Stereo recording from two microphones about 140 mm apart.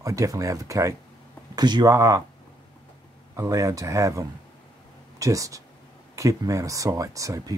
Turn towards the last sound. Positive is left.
turn(degrees=-25)  # may be behind; listen again after turning